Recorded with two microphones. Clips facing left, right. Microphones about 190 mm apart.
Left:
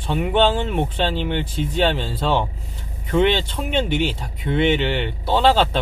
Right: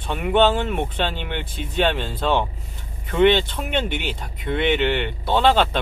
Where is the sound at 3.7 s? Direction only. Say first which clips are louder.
Left 3 dB; 55° right (ahead or behind).